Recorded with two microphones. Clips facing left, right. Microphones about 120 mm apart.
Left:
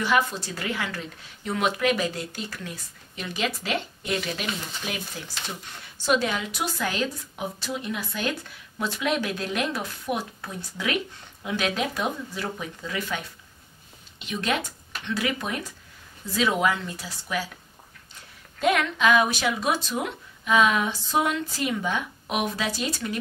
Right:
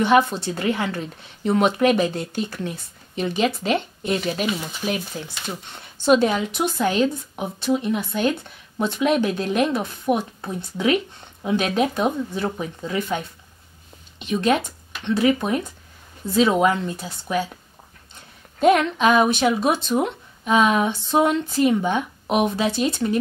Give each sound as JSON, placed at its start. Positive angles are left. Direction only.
{"t": 0.0, "sound": "a woman's voice", "side_deg": -25}
{"t": 14.2, "sound": "a woman's voice", "side_deg": -25}
{"t": 18.6, "sound": "a woman's voice", "side_deg": -25}